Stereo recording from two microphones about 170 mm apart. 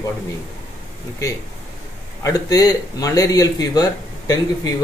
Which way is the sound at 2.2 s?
20° left (ahead or behind).